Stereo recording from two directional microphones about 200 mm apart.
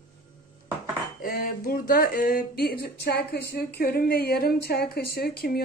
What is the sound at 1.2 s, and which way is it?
Speech, 45° left (ahead or behind).